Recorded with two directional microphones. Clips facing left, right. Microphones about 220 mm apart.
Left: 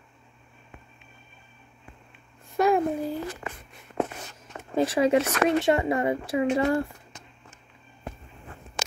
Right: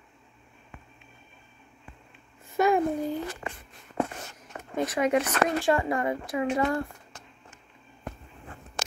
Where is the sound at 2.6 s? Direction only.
Centre (ahead or behind).